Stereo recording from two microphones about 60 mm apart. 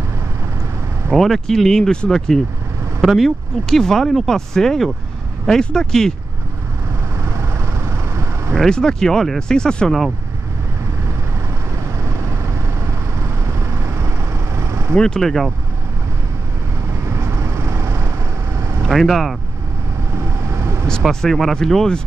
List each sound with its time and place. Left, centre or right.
1.1 s speech: centre
7.2 s vehicle: right
8.5 s speech: centre
13.5 s vehicle: right
15.0 s speech: centre
17.1 s vehicle: right
18.9 s speech: centre
20.5 s vehicle: right
21.1 s speech: centre